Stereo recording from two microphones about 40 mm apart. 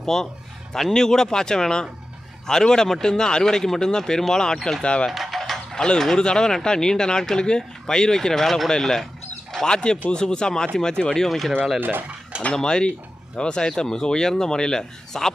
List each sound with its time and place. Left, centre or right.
0.0 s speech: centre
5.1 s a sound: centre
5.4 s mechanisms: centre
5.9 s speech: centre
11.1 s speech: centre
11.8 s speech: right
12.5 s speech: centre